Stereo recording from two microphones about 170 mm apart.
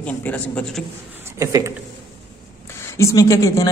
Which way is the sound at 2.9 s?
20° left (ahead or behind).